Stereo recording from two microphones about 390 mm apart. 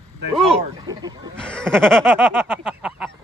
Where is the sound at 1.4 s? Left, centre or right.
Centre.